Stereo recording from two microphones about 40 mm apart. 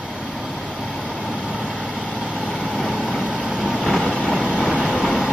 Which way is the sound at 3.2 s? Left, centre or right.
Right.